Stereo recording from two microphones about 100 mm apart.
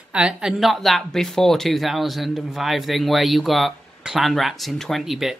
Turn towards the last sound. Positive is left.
turn(degrees=-5)  # may be behind; listen again after turning